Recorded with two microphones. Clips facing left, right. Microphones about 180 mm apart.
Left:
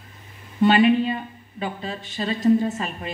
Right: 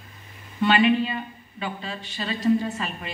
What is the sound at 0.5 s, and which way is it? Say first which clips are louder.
A woman's voice: left 3 dB; 45° left (ahead or behind).